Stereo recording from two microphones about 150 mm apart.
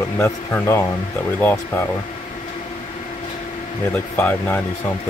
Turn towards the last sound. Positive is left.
turn(degrees=10)  # may be behind; listen again after turning